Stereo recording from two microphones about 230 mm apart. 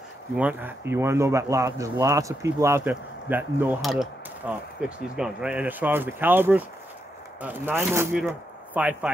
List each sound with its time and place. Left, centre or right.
0.4 s speech: centre